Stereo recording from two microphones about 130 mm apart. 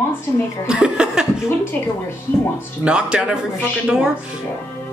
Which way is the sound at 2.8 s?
5° right (ahead or behind).